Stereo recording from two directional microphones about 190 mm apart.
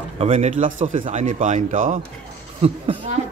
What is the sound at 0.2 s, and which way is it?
Speech, 35° right (ahead or behind).